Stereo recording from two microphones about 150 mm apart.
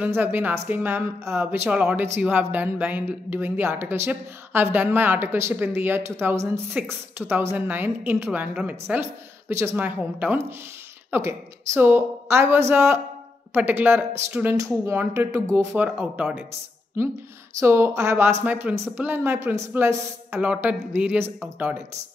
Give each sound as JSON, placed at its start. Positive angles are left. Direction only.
{"t": 0.0, "sound": "speech", "side_deg": -15}
{"t": 17.6, "sound": "speech", "side_deg": -15}